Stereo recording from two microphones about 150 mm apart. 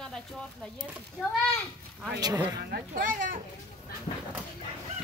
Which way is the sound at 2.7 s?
70° right (ahead or behind).